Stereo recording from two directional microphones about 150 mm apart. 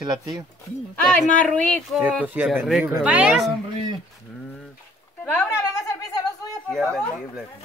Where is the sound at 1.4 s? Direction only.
10° left (ahead or behind).